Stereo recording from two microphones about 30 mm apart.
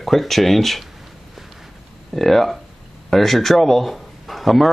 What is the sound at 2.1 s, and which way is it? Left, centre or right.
A man's voice, centre.